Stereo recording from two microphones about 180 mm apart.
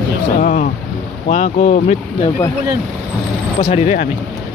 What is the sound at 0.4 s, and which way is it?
Speech, 50° left (ahead or behind).